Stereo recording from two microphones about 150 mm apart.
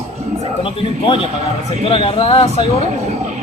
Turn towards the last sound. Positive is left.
turn(degrees=40)  # may be behind; listen again after turning